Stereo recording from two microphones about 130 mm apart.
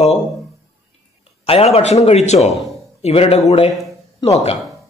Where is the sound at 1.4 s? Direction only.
50° left (ahead or behind).